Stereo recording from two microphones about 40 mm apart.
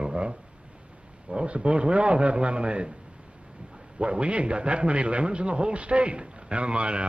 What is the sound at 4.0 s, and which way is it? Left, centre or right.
A man's voice, right.